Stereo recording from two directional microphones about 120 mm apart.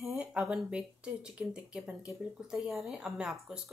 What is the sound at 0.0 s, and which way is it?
A woman's voice, 5° right (ahead or behind).